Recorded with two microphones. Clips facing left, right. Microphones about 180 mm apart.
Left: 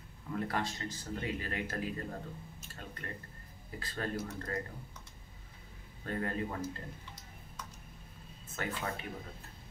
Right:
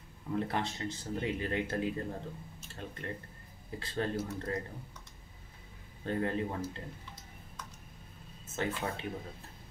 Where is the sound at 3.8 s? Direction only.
25° right (ahead or behind).